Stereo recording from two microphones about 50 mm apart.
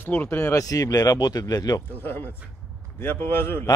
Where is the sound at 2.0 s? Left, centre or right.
Left.